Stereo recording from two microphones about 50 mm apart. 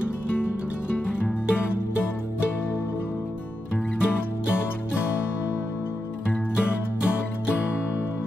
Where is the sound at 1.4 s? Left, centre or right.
Left.